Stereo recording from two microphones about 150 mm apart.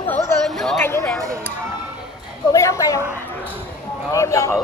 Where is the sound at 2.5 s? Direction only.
20° left (ahead or behind).